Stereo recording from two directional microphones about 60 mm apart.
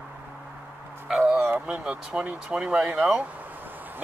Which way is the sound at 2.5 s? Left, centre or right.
Centre.